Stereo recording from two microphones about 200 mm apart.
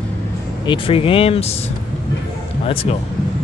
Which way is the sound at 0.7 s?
25° left (ahead or behind).